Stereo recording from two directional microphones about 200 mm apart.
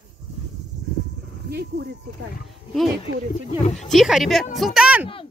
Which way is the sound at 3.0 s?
30° left (ahead or behind).